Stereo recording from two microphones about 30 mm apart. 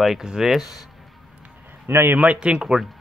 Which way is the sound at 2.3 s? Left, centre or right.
Right.